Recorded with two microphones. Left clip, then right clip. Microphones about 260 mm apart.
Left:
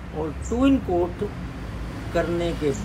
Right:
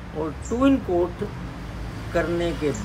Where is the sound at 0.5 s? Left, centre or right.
Centre.